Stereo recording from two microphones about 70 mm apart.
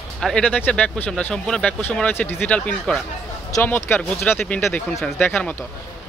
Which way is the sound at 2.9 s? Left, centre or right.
Centre.